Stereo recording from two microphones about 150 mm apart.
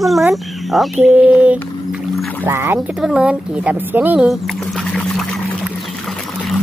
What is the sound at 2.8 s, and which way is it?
A woman's voice, 5° right (ahead or behind).